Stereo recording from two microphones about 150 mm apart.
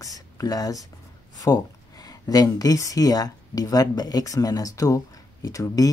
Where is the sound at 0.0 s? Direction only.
20° left (ahead or behind).